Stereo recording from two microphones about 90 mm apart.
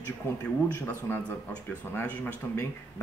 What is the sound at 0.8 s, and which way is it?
Speech, 20° left (ahead or behind).